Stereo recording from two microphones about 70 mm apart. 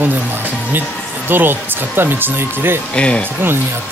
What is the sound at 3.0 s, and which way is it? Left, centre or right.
Speech, centre.